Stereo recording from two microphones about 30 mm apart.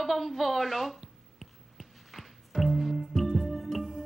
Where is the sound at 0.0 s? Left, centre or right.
Centre.